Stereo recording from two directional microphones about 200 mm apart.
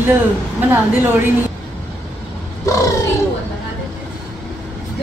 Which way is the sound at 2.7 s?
15° left (ahead or behind).